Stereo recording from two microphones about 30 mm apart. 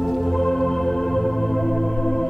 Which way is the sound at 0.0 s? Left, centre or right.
Centre.